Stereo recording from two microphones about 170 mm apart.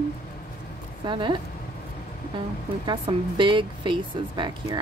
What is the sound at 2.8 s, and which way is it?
Speech, 30° right (ahead or behind).